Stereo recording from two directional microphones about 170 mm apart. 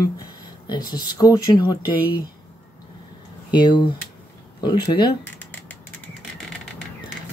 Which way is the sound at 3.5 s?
25° left (ahead or behind).